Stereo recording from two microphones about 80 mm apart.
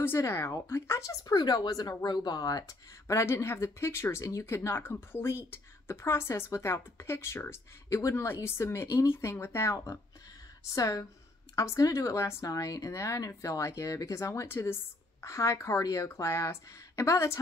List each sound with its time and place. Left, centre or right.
0.0 s speech: left
1.2 s speech: left
3.1 s speech: left